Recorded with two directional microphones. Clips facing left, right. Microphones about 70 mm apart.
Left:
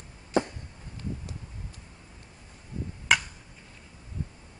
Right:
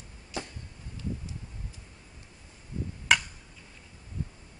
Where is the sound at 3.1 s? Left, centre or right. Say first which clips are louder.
Even; centre.